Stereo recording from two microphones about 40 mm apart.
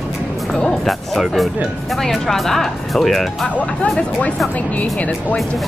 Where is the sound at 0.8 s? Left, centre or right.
Centre.